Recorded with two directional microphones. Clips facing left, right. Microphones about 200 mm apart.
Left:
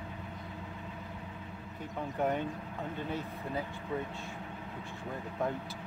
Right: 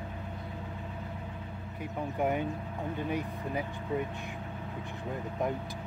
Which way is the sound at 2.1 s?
10° right (ahead or behind).